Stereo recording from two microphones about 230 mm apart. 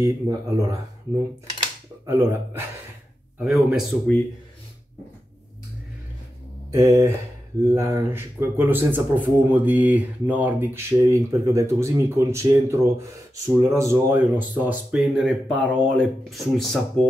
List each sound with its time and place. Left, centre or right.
0.0 s speech: centre
2.0 s speech: centre
6.7 s speech: centre